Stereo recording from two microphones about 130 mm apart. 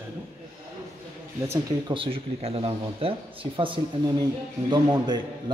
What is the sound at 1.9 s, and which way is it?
A man's voice, 45° right (ahead or behind).